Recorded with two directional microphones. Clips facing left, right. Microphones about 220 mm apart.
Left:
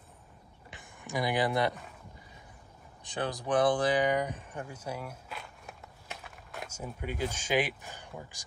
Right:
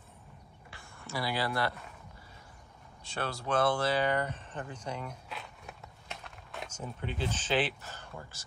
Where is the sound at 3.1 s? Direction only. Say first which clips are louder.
Left 2 dB; 15° left (ahead or behind).